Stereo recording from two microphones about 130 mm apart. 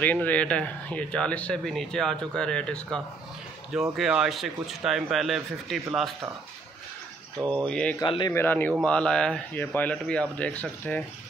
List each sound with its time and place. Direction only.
0.0 s speech: 10° left (ahead or behind)
3.9 s speech: 5° right (ahead or behind)
7.3 s speech: 35° right (ahead or behind)
7.6 s speech: 10° left (ahead or behind)
8.0 s a man's voice: 35° left (ahead or behind)
8.3 s speech: 15° left (ahead or behind)